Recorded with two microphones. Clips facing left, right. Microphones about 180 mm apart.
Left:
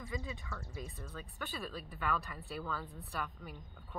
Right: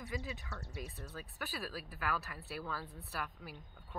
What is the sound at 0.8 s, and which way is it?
Speech, 70° right (ahead or behind).